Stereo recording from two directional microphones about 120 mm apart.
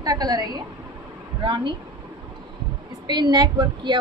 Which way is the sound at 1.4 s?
45° right (ahead or behind).